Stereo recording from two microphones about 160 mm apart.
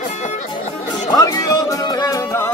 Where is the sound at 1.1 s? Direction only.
25° left (ahead or behind).